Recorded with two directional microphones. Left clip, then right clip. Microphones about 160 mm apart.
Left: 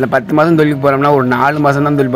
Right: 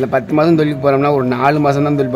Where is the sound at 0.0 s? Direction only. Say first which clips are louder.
Left 2 dB; 20° left (ahead or behind).